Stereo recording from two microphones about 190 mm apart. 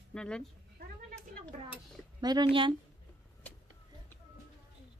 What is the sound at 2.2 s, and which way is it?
Speech, 25° right (ahead or behind).